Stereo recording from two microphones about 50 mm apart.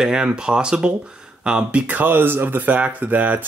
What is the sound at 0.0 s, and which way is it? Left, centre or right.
Speech, centre.